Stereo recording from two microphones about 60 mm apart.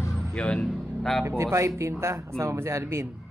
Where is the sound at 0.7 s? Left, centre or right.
Centre.